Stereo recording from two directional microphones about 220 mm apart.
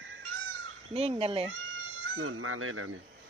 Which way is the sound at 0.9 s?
25° right (ahead or behind).